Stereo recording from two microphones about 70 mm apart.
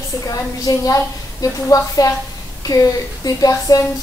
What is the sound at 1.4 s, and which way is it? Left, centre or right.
Speech, left.